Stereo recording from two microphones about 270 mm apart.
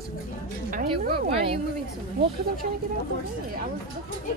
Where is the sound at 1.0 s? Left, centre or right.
Right.